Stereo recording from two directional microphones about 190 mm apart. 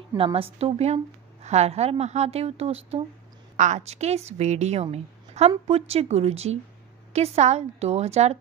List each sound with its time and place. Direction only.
0.2 s a woman's voice: 30° right (ahead or behind)